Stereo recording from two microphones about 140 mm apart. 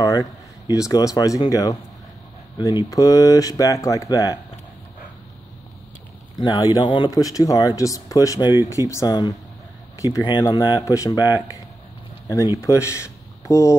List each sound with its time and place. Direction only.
0.7 s speech: 25° left (ahead or behind)
6.3 s speech: 30° left (ahead or behind)